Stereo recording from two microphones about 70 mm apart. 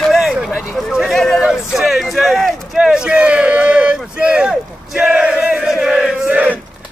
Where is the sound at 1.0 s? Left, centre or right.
Centre.